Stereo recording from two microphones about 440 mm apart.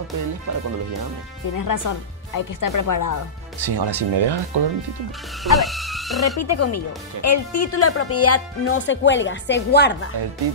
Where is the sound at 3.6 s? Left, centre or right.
Right.